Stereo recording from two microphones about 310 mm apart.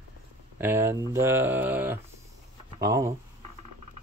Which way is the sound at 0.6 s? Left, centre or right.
Centre.